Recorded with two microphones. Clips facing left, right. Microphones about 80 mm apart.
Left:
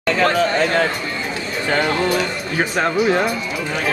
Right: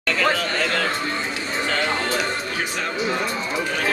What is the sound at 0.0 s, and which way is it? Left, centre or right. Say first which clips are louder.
Chatter: left 5 dB; left.